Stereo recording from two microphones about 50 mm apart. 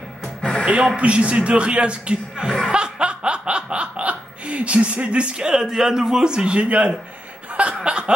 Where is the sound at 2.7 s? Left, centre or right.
Right.